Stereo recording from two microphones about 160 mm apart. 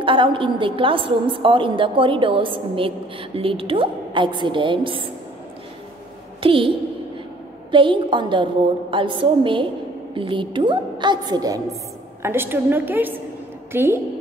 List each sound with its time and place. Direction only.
0.0 s a woman's voice: 30° right (ahead or behind)
6.4 s a woman's voice: 35° right (ahead or behind)
7.7 s a woman's voice: 30° right (ahead or behind); by 13.9 s 15° right (ahead or behind)